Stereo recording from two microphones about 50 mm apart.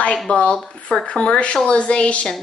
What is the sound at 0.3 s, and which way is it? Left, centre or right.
Speech, left.